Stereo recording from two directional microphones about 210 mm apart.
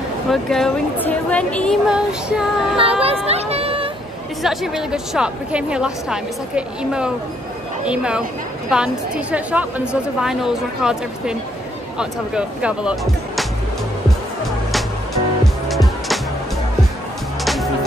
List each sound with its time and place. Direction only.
0.3 s a woman's voice: centre (ahead or behind)
2.8 s speech: 25° right (ahead or behind)
4.4 s a woman's voice: centre (ahead or behind)
15.4 s music: centre (ahead or behind)